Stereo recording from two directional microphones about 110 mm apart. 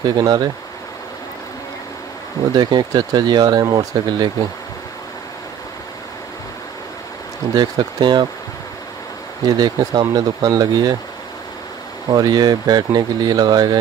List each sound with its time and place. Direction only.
0.0 s speech: 40° right (ahead or behind)
2.5 s speech: 40° right (ahead or behind)
7.5 s speech: 40° right (ahead or behind)
9.5 s speech: 35° right (ahead or behind)
12.1 s speech: 40° right (ahead or behind)